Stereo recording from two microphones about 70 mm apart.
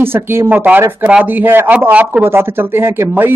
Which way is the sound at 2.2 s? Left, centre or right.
Right.